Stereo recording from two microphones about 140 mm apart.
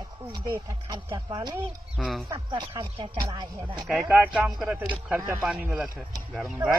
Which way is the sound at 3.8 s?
5° right (ahead or behind).